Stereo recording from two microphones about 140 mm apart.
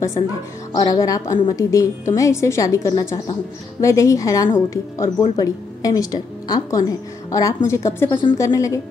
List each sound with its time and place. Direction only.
0.7 s speech: 25° left (ahead or behind)